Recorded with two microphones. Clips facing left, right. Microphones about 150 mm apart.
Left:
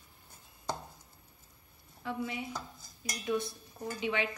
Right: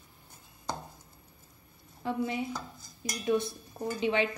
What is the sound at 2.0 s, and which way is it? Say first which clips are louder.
Dishes: right 5 dB; 35° right (ahead or behind).